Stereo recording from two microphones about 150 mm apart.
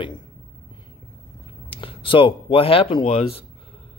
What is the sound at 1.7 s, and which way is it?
Speech, 35° left (ahead or behind).